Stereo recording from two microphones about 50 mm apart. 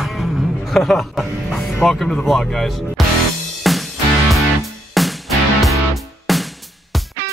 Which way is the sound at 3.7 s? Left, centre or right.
Centre.